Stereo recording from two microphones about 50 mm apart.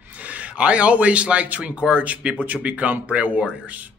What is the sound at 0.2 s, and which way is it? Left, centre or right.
A man's voice, right.